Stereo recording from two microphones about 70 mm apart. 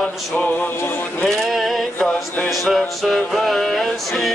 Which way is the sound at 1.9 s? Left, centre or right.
Centre.